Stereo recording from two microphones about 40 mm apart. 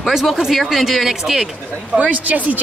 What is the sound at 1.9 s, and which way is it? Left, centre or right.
Speech, right.